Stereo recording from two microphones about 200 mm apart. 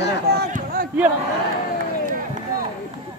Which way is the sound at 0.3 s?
50° right (ahead or behind).